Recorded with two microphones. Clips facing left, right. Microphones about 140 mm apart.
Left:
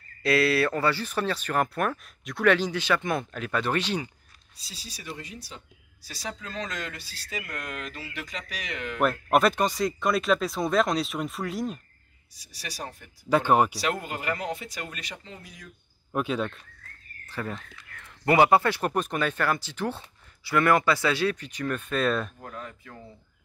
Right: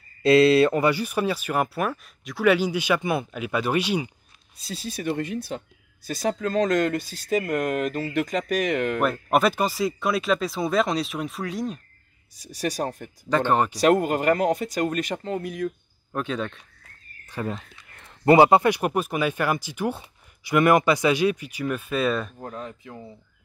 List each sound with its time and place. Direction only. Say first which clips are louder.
0.2 s speech: right 7 dB; 25° right (ahead or behind)
4.6 s speech: right 13 dB; 55° right (ahead or behind)
9.0 s speech: left 2 dB; centre (ahead or behind)
12.4 s speech: right 12 dB; 45° right (ahead or behind)
13.3 s speech: even; 10° left (ahead or behind)
13.7 s speech: right 11 dB; 45° right (ahead or behind)
16.1 s speech: even; 5° left (ahead or behind)
17.3 s speech: right 4 dB; 20° right (ahead or behind); by 22.3 s 5° right (ahead or behind)
22.4 s speech: right 5 dB; 25° right (ahead or behind)